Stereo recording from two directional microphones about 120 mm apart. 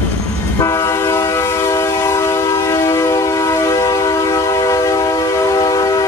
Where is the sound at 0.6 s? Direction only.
25° left (ahead or behind).